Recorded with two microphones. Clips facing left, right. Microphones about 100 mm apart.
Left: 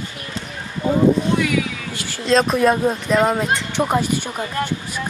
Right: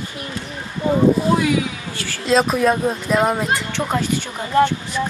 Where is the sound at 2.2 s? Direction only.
5° right (ahead or behind).